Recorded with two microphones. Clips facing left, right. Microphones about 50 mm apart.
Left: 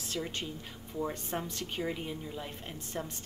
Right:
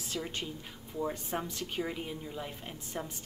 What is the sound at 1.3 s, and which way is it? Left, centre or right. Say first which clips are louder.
Speech: right 1 dB; centre.